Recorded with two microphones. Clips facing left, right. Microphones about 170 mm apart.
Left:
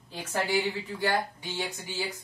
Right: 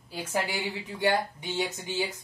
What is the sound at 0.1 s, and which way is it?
A woman's voice, 10° right (ahead or behind).